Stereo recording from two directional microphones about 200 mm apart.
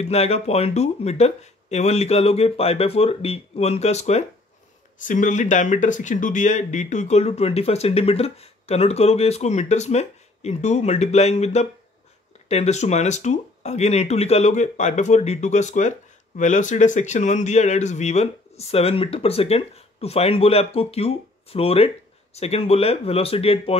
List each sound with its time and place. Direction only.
0.0 s speech: 30° left (ahead or behind)